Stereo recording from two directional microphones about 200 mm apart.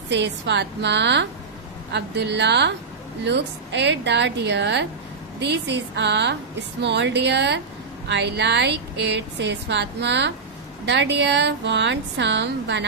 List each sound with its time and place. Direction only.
0.1 s a woman's voice: 60° right (ahead or behind)